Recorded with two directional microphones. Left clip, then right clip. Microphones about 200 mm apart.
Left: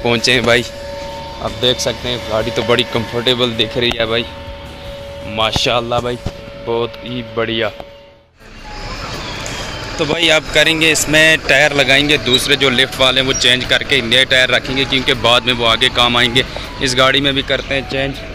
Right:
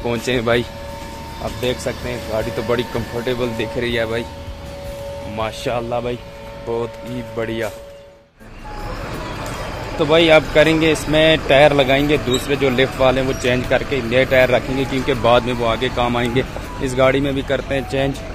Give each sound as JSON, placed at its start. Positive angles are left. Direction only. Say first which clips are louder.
{"t": 0.0, "sound": "speech", "louder": "left 7 dB", "side_deg": 5}
{"t": 5.3, "sound": "speech", "louder": "left 8 dB", "side_deg": 10}
{"t": 7.3, "sound": "speech", "louder": "left 6 dB", "side_deg": 0}
{"t": 9.9, "sound": "speech", "louder": "right 1 dB", "side_deg": -5}
{"t": 17.5, "sound": "speech", "louder": "left 3 dB", "side_deg": -15}